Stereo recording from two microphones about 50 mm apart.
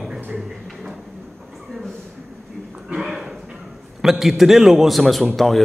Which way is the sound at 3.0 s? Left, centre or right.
Centre.